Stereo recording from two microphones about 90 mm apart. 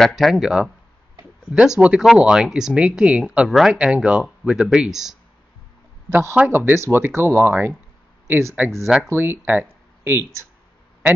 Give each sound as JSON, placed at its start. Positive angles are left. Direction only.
{"t": 0.0, "sound": "speech", "side_deg": 0}
{"t": 6.3, "sound": "speech", "side_deg": -15}
{"t": 6.6, "sound": "speech", "side_deg": -30}